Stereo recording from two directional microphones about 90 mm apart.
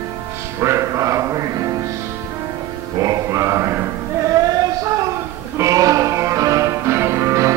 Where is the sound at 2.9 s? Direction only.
35° right (ahead or behind).